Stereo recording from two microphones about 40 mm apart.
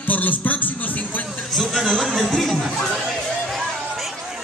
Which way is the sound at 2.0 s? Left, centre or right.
Centre.